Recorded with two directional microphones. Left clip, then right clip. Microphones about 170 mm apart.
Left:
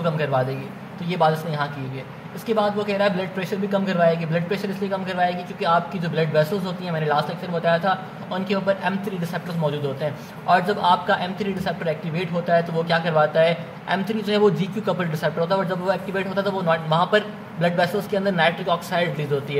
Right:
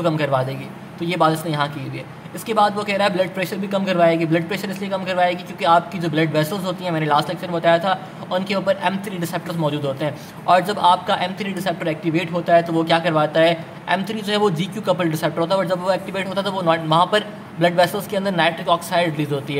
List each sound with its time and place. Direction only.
1.0 s a man's voice: 25° right (ahead or behind)